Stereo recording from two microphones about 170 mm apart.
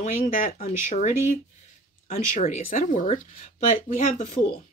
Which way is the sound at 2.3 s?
50° left (ahead or behind).